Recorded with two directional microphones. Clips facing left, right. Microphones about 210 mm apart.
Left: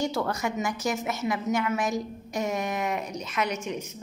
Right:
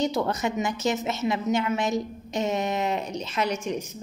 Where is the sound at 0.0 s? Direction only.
20° right (ahead or behind).